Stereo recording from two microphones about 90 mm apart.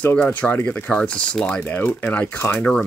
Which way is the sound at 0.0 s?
20° left (ahead or behind).